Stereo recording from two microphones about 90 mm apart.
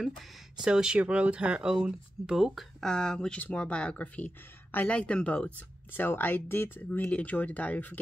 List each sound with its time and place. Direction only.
0.6 s speech: 10° right (ahead or behind)
2.8 s speech: 5° left (ahead or behind)